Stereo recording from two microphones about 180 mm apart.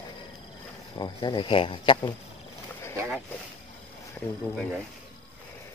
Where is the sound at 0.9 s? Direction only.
25° left (ahead or behind).